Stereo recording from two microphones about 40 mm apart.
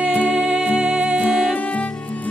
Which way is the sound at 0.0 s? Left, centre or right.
Right.